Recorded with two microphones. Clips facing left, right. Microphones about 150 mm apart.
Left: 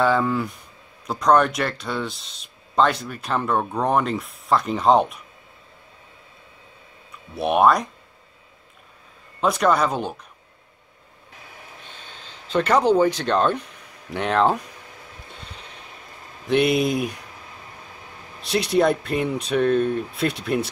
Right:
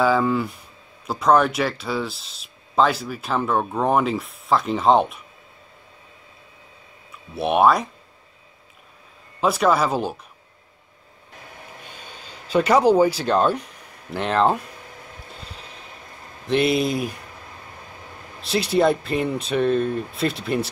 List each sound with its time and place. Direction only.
0.0 s speech: centre (ahead or behind)
7.3 s speech: centre (ahead or behind)
9.4 s speech: 5° right (ahead or behind)
11.9 s speech: 10° right (ahead or behind)
15.4 s a sound: centre (ahead or behind)
16.4 s speech: centre (ahead or behind)
18.5 s speech: centre (ahead or behind)